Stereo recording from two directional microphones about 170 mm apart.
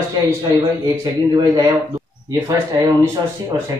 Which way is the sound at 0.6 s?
25° right (ahead or behind).